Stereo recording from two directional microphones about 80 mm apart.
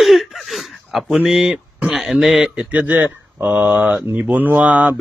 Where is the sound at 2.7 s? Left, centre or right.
Right.